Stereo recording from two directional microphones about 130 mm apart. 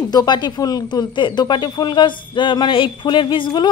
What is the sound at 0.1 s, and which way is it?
A woman's voice, 35° left (ahead or behind).